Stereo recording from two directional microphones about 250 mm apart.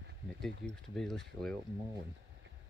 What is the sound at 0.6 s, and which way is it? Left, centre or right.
Speech, centre.